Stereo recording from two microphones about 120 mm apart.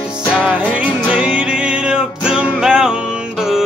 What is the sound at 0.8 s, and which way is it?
Music, 10° right (ahead or behind).